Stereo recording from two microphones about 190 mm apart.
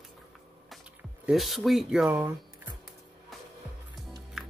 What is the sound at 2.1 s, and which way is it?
Speech, 15° right (ahead or behind).